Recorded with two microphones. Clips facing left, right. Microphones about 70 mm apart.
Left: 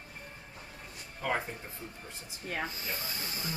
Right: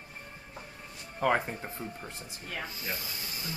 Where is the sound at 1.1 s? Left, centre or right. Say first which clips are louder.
Right 6 dB; right.